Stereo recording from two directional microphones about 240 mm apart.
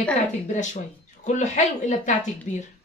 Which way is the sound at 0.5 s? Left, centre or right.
Left.